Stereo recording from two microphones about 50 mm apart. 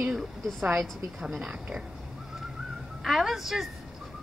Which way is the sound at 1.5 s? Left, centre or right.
Right.